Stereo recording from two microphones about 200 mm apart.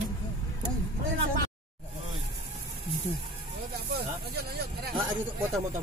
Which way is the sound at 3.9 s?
50° right (ahead or behind).